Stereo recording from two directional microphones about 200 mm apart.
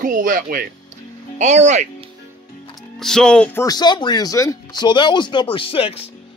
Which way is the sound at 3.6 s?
20° left (ahead or behind).